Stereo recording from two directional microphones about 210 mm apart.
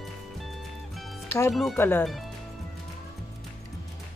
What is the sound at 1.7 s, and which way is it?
Speech, 10° left (ahead or behind).